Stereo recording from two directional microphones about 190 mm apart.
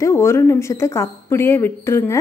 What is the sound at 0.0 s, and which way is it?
Speech, 15° left (ahead or behind).